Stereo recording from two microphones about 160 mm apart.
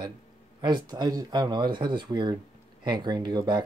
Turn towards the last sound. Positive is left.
turn(degrees=-25)  # may be behind; listen again after turning